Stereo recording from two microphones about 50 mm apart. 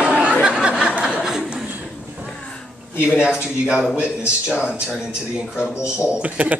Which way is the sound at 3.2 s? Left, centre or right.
Centre.